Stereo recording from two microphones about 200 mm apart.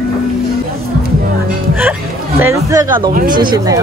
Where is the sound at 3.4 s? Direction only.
25° right (ahead or behind).